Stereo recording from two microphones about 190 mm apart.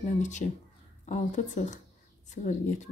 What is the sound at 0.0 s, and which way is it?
Speech, 40° left (ahead or behind).